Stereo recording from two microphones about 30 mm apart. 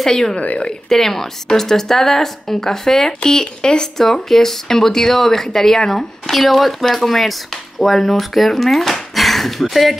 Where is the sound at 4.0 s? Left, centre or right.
Centre.